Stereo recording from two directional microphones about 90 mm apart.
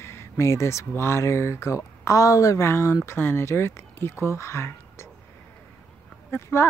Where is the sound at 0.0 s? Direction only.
30° left (ahead or behind).